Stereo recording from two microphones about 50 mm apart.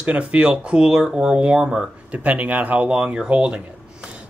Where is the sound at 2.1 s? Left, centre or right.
Right.